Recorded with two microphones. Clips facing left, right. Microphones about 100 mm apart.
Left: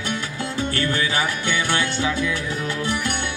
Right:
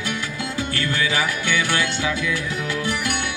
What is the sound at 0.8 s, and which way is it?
Music, 25° left (ahead or behind).